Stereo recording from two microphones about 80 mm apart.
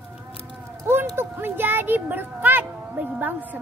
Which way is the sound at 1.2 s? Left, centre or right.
Right.